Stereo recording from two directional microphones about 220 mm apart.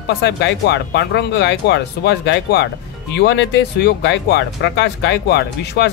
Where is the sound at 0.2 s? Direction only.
50° left (ahead or behind).